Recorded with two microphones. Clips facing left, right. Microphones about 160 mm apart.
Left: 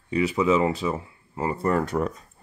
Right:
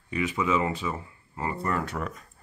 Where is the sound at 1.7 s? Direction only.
40° left (ahead or behind).